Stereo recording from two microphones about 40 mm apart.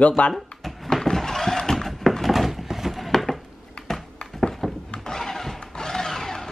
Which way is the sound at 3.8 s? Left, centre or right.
Centre.